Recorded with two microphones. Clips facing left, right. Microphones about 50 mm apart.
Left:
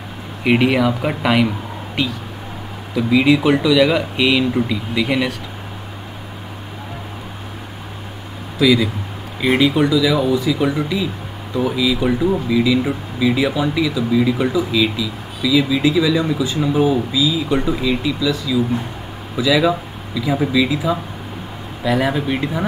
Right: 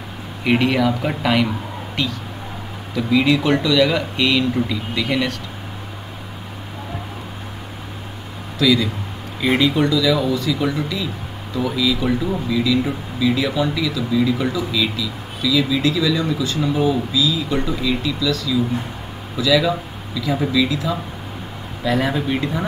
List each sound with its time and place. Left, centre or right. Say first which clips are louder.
0.4 s speech: left 2 dB; centre
8.5 s speech: left 2 dB; centre